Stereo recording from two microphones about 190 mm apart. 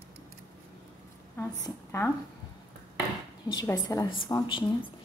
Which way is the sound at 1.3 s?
15° left (ahead or behind).